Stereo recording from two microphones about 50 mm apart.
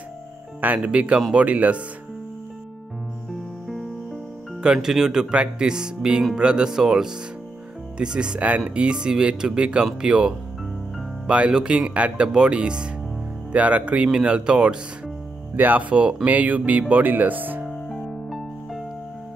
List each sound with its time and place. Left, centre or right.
0.8 s speech: right
4.7 s speech: centre
5.3 s speech: centre
15.5 s speech: right
17.6 s music: centre